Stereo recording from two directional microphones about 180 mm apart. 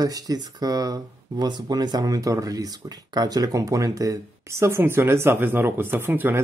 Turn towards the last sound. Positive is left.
turn(degrees=-10)  # may be behind; listen again after turning